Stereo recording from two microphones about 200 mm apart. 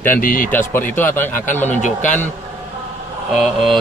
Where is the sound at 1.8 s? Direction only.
40° left (ahead or behind).